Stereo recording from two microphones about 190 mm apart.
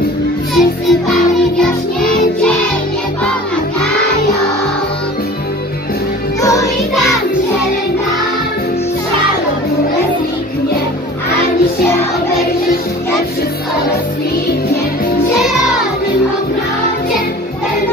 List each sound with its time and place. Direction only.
0.6 s music: centre (ahead or behind)
6.4 s music: 15° left (ahead or behind)